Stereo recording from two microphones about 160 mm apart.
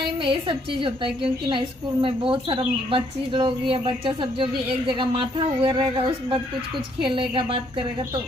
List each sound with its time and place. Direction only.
0.2 s speech: 30° right (ahead or behind)
5.6 s speech: 35° right (ahead or behind)
7.0 s speech: 30° right (ahead or behind)